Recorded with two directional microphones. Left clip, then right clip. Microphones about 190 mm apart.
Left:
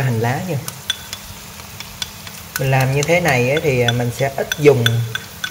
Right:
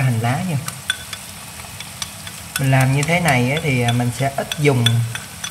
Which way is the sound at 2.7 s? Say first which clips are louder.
Left 3 dB; 10° left (ahead or behind).